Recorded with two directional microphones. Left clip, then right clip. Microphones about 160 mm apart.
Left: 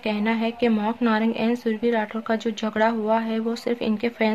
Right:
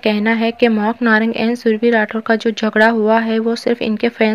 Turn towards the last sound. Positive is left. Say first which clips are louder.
# right 8 dB
turn(degrees=-25)  # may be behind; listen again after turning